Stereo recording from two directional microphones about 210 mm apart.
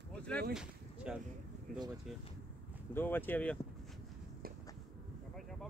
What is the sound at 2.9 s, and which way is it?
Speech, 10° left (ahead or behind).